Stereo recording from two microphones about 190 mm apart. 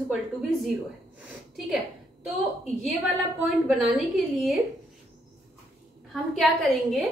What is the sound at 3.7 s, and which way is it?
Speech, centre (ahead or behind).